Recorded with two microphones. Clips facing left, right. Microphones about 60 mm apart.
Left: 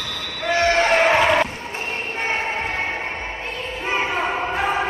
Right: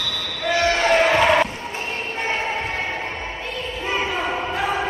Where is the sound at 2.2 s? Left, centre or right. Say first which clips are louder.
Left 1 dB; centre.